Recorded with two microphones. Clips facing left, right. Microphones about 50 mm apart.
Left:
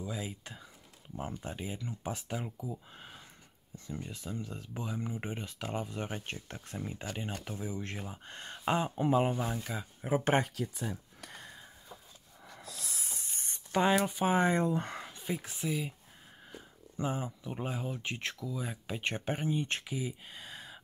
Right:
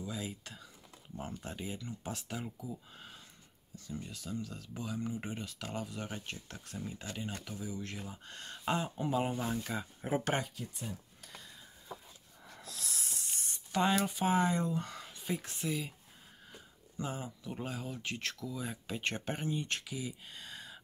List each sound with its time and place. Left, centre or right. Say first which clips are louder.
0.0 s speech: left 2 dB; centre
9.5 s speech: right 1 dB; centre
11.1 s a sound: left 4 dB; left
12.5 s a sound: even; centre
13.7 s speech: left 3 dB; left
14.0 s speech: left 2 dB; centre
14.3 s speech: left 3 dB; left
15.1 s speech: right 2 dB; centre
16.9 s speech: left 5 dB; centre